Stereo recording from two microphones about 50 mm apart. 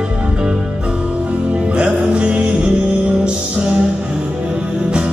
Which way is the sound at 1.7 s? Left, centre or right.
Centre.